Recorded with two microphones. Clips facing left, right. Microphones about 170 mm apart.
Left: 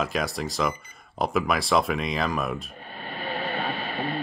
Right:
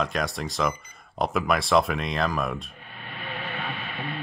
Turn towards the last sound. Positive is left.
turn(degrees=35)  # may be behind; listen again after turning